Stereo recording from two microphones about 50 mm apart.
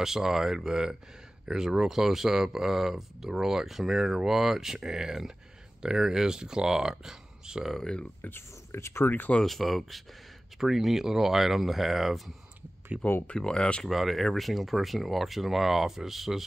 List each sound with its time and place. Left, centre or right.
0.0 s speech: centre
7.8 s speech: centre
8.3 s speech: left
9.0 s speech: left
9.4 s speech: centre
13.6 s speech: left
13.8 s speech: centre